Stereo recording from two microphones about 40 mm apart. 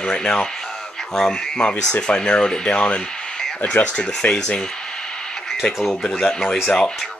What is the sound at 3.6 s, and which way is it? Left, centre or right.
Speech, left.